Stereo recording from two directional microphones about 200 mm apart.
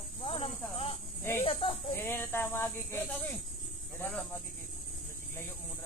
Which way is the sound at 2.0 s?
10° left (ahead or behind).